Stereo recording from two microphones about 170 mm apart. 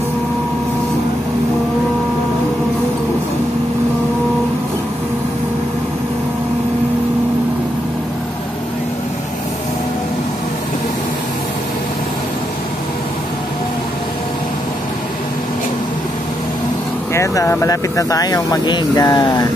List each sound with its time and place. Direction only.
17.1 s speech: 20° left (ahead or behind)